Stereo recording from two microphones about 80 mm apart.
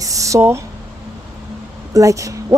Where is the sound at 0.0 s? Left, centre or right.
Right.